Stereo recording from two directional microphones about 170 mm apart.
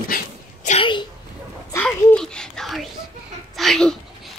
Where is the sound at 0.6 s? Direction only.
35° left (ahead or behind).